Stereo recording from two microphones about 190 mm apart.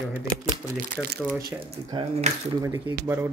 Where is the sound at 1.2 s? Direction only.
5° right (ahead or behind).